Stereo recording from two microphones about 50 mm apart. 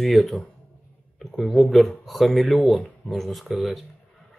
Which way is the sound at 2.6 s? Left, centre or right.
Left.